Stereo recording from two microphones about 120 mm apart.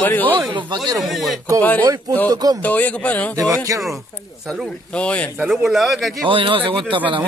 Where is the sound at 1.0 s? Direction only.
Centre (ahead or behind).